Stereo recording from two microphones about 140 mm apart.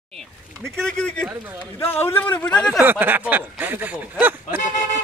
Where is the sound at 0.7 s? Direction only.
5° left (ahead or behind).